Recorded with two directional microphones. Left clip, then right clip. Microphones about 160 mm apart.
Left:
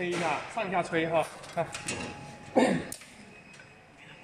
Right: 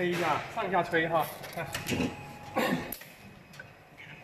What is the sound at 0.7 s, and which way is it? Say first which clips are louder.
Speech: right 2 dB; centre (ahead or behind).